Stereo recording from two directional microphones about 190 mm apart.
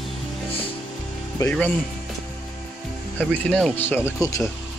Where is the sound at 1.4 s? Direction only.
5° left (ahead or behind).